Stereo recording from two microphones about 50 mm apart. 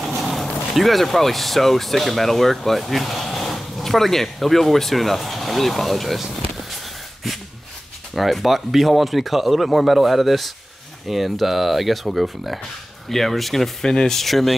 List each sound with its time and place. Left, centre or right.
0.0 s a sound: centre
0.7 s speech: centre
8.1 s speech: centre